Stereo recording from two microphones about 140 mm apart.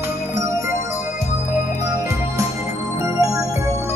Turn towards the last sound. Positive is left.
turn(degrees=-20)  # may be behind; listen again after turning